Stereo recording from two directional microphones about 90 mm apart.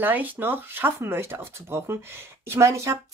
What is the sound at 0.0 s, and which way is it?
Speech, 20° right (ahead or behind).